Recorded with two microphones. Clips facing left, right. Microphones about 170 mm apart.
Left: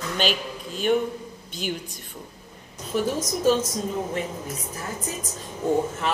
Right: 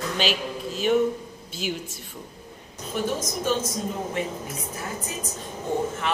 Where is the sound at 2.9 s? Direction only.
40° left (ahead or behind).